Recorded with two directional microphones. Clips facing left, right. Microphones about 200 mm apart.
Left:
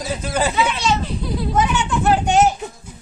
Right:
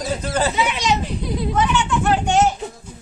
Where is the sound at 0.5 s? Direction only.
15° right (ahead or behind).